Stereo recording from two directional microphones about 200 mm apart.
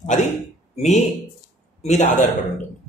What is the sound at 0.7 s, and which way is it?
A man's voice, 35° left (ahead or behind).